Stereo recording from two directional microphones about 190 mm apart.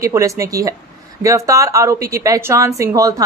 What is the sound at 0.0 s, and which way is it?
A woman's voice, 15° right (ahead or behind).